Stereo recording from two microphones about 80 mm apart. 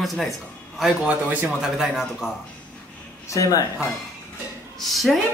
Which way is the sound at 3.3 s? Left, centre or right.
Left.